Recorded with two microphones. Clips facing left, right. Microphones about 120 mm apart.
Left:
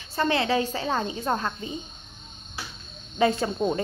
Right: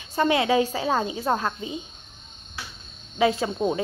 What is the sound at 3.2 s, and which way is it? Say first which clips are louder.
Speech: right 1 dB; centre (ahead or behind).